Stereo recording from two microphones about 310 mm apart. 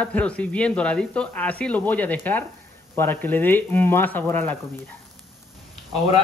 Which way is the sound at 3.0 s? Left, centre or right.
Centre.